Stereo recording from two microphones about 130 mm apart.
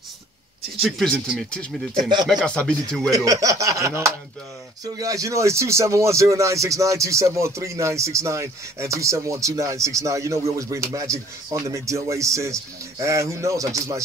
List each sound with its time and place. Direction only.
0.8 s speech: 5° left (ahead or behind)
3.1 s speech: 25° right (ahead or behind)